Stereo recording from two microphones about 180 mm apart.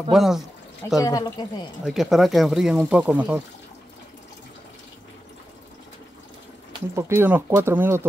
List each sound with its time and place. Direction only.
0.1 s speech: centre (ahead or behind)
1.0 s a man's voice: 20° left (ahead or behind)
1.9 s speech: centre (ahead or behind)
6.7 s speech: 15° right (ahead or behind)